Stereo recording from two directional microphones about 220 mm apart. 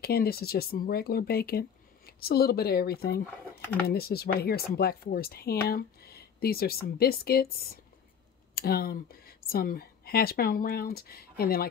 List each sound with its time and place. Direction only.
0.0 s speech: 45° left (ahead or behind)